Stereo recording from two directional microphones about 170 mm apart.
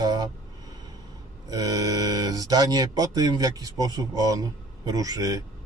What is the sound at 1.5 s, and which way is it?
Speech, 20° right (ahead or behind).